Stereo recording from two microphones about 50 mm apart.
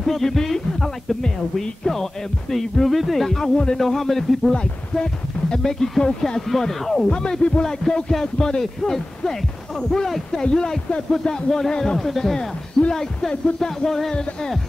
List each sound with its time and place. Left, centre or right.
0.0 s speech: centre
2.5 s a sound: centre
4.6 s speech: centre
6.5 s a sound: centre
7.1 s speech: centre
7.6 s speech: centre